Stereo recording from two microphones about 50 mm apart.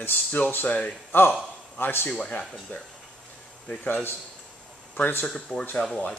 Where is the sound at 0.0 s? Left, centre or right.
Left.